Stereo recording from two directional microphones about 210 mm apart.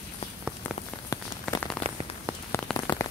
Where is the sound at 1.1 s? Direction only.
15° left (ahead or behind).